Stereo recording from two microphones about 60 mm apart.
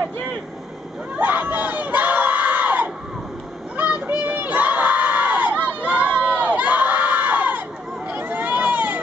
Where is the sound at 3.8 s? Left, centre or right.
Right.